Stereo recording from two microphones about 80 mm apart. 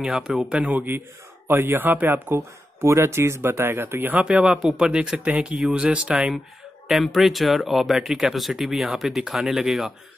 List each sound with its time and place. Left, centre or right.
0.0 s speech: centre; by 4.3 s right
4.3 s speech: centre
6.9 s speech: centre